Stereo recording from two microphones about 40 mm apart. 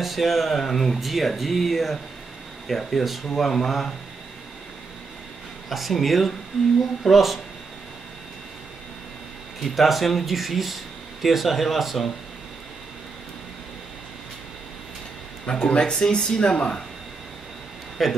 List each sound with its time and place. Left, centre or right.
0.0 s speech: centre
5.7 s speech: centre
9.6 s speech: centre
15.4 s speech: left
18.0 s speech: centre